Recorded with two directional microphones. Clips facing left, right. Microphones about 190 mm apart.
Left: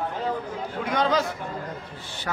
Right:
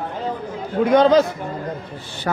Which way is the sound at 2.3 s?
45° right (ahead or behind).